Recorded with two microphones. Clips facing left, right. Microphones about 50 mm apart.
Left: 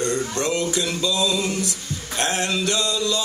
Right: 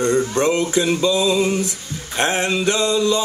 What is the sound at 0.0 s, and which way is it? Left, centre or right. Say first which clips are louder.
Male singing: right 6 dB; right.